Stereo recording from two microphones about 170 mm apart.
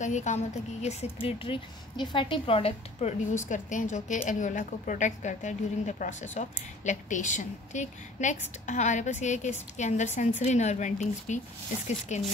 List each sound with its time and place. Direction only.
0.0 s a woman's voice: 45° left (ahead or behind)
0.8 s a woman's voice: 35° left (ahead or behind)